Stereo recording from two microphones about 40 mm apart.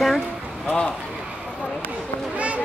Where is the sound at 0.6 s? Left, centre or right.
Left.